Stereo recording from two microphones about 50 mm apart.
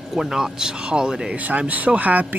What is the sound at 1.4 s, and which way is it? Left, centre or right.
Speech, right.